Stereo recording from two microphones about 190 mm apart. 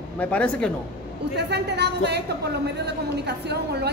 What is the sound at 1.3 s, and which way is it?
A woman's voice, 60° right (ahead or behind).